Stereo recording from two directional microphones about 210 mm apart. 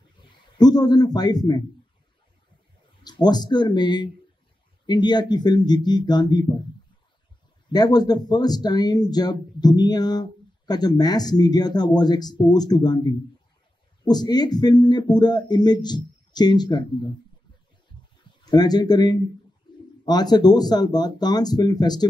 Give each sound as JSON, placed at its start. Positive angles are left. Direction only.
{"t": 0.6, "sound": "speech", "side_deg": 20}
{"t": 3.0, "sound": "speech", "side_deg": 20}
{"t": 7.7, "sound": "speech", "side_deg": 20}
{"t": 18.4, "sound": "speech", "side_deg": 20}